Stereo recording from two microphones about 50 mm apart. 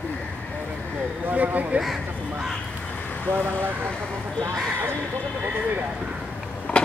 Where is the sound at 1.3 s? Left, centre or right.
Right.